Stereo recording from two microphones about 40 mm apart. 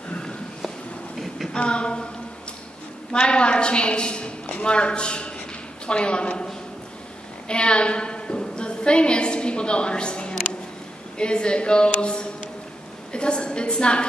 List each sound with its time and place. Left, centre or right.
1.5 s a woman's voice: left
3.1 s a woman's voice: left